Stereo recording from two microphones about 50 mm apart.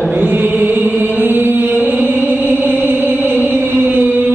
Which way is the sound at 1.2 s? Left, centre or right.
Right.